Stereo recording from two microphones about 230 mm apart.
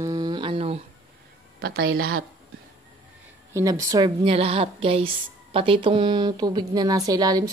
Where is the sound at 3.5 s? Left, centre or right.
Centre.